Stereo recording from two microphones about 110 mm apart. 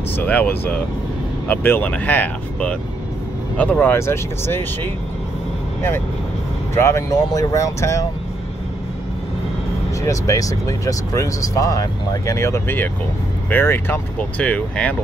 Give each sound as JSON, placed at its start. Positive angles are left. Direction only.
{"t": 0.2, "sound": "speech", "side_deg": 15}
{"t": 5.8, "sound": "speech", "side_deg": 20}
{"t": 10.0, "sound": "speech", "side_deg": 30}